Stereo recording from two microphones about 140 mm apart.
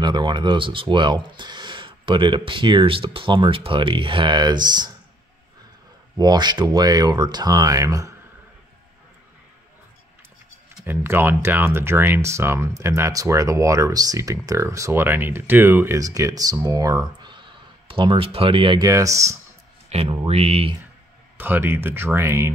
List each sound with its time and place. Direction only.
0.0 s speech: 30° right (ahead or behind)
6.1 s speech: 30° right (ahead or behind)
10.9 s speech: 15° right (ahead or behind); by 18.9 s 40° right (ahead or behind)
18.9 s speech: 20° right (ahead or behind)
19.9 s speech: 45° right (ahead or behind)
21.4 s speech: 15° right (ahead or behind)